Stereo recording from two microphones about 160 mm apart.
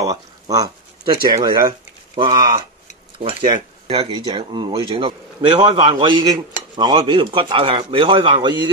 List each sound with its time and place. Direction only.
0.0 s speech: 20° right (ahead or behind)